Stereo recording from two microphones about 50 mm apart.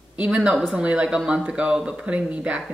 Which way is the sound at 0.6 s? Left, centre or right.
Right.